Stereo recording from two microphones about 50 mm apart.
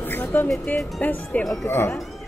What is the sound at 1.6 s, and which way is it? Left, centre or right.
Speech, left.